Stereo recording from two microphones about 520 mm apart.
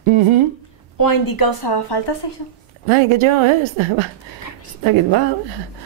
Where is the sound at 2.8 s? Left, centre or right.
Right.